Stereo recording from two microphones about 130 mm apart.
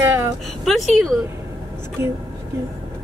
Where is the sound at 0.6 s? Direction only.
Centre (ahead or behind).